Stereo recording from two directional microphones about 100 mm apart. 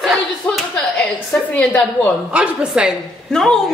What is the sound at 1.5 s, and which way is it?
Speech, 15° left (ahead or behind).